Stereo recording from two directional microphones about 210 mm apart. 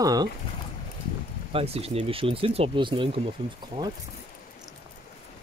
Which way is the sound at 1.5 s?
30° right (ahead or behind).